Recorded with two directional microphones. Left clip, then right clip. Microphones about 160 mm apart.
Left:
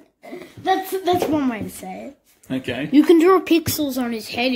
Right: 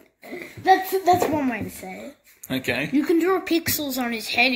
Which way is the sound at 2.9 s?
90° left.